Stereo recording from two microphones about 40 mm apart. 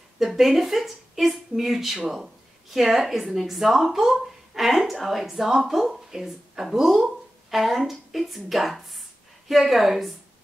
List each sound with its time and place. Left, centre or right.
0.2 s a woman's voice: centre